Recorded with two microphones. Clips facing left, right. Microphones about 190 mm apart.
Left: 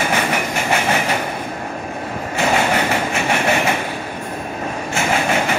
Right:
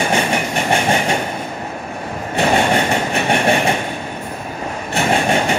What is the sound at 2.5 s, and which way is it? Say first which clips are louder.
Train: right 2 dB; 30° right (ahead or behind).